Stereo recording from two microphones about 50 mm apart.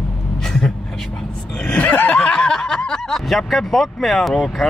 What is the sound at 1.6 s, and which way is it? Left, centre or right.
Snicker, left.